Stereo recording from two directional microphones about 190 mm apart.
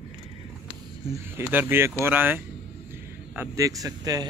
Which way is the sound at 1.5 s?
10° right (ahead or behind).